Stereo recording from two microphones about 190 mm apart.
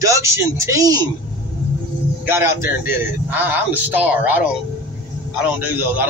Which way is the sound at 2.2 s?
10° right (ahead or behind).